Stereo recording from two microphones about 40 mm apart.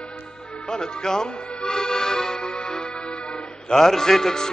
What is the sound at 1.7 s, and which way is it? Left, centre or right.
Music, centre.